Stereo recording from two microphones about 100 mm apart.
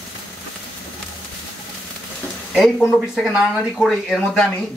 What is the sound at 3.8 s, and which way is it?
Speech, centre (ahead or behind).